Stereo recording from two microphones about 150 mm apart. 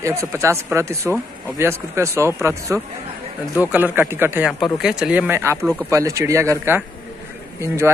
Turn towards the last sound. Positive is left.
turn(degrees=-20)  # may be behind; listen again after turning